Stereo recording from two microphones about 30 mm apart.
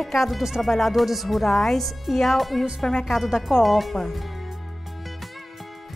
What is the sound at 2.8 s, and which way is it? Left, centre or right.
Speech, left.